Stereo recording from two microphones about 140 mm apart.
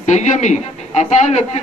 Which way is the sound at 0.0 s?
60° left (ahead or behind).